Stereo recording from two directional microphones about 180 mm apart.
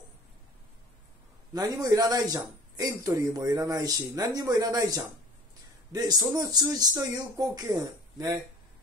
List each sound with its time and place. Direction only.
1.5 s a man's voice: 20° right (ahead or behind)